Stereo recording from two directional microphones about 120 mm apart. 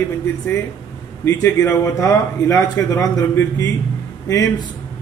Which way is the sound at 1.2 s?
25° left (ahead or behind).